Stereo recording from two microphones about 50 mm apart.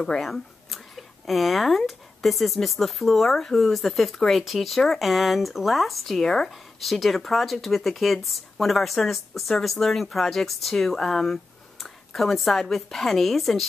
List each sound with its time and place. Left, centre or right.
0.0 s speech: centre
11.8 s a sound: centre
12.6 s speech: centre